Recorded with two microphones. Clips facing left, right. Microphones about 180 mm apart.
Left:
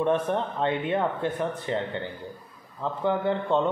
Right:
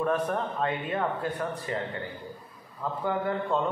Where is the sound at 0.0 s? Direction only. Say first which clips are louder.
Left 3 dB; 25° left (ahead or behind).